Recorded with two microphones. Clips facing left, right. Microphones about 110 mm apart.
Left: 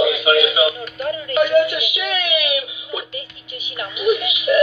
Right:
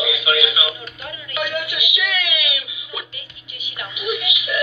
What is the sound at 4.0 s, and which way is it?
Music, 35° left (ahead or behind).